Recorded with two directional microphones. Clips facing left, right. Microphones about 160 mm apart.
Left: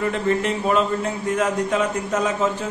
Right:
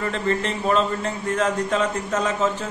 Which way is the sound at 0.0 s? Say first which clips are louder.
Left 3 dB; 10° left (ahead or behind).